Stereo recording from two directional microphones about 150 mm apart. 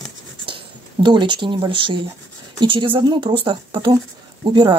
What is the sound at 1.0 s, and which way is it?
Speech, 30° right (ahead or behind).